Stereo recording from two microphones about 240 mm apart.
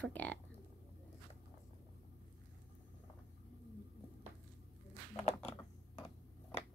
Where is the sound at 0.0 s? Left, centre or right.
Centre.